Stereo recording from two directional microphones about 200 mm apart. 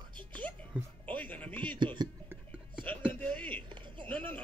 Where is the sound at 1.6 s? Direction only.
25° right (ahead or behind).